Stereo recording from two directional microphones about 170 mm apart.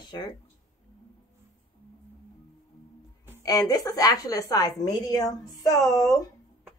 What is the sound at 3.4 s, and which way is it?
A woman's voice, 20° left (ahead or behind).